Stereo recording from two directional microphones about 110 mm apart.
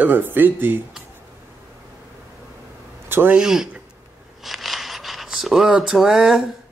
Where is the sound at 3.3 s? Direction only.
5° right (ahead or behind).